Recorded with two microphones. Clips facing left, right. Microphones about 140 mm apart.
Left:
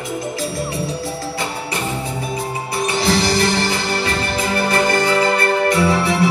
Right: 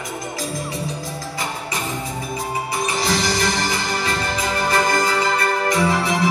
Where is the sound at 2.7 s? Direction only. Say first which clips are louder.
Left 5 dB; 65° left (ahead or behind).